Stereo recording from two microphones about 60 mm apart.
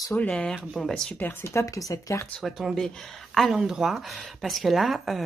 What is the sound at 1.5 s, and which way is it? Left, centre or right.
Speech, left.